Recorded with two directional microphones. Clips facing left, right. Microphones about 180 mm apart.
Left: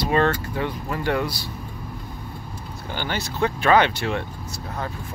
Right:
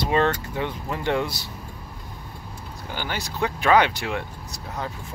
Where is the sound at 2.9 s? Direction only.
10° right (ahead or behind).